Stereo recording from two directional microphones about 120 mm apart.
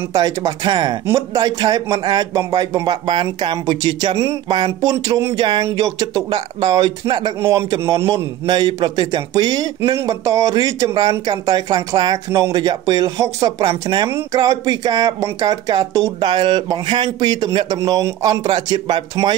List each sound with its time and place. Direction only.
0.1 s a man's voice: 30° right (ahead or behind)
8.5 s a man's voice: 40° right (ahead or behind)